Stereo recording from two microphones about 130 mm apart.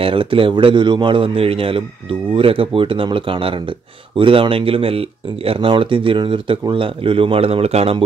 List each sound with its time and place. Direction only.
0.0 s speech: 40° right (ahead or behind)